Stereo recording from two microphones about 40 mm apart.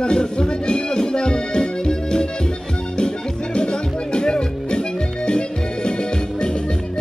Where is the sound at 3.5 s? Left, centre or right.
Left.